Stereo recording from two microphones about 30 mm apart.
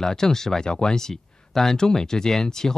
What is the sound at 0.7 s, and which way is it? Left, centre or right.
Speech, left.